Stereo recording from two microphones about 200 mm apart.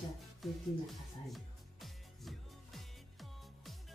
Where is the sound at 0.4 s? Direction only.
Centre (ahead or behind).